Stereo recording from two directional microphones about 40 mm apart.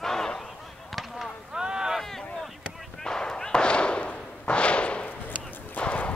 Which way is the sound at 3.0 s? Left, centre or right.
Centre.